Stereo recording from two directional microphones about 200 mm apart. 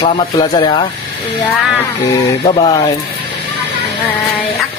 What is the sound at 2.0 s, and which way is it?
Speech, 20° left (ahead or behind).